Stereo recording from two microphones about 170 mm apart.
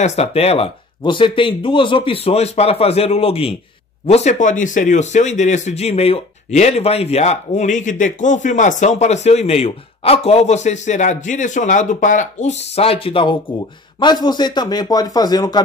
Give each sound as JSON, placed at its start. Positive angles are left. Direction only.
{"t": 0.0, "sound": "a man's voice", "side_deg": 40}